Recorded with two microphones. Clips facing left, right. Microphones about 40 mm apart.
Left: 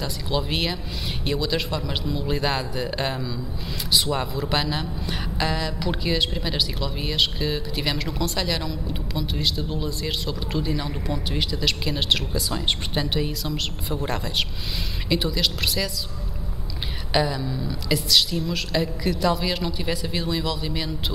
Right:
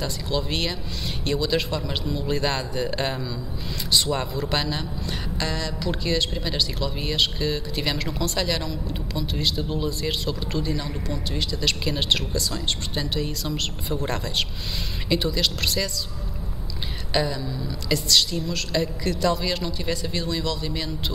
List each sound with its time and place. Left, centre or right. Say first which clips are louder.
0.3 s a man's voice: left 2 dB; centre
11.6 s a man's voice: even; centre
12.4 s a woman's voice: left 2 dB; centre
13.4 s a man's voice: even; centre
17.1 s a woman's voice: left 2 dB; centre